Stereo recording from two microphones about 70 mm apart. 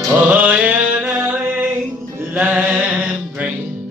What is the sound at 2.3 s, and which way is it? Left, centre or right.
Music, right.